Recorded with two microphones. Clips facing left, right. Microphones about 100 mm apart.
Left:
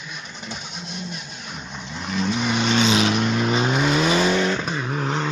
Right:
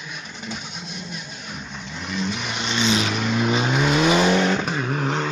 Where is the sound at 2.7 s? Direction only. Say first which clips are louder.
Left 1 dB; 40° left (ahead or behind).